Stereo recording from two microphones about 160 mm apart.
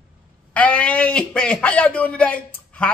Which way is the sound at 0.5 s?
10° left (ahead or behind).